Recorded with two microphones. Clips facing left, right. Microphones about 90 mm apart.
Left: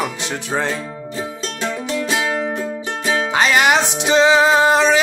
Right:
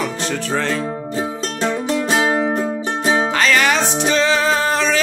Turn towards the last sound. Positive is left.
turn(degrees=20)  # may be behind; listen again after turning